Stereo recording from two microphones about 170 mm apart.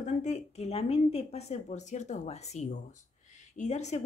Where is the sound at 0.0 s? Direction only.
45° left (ahead or behind).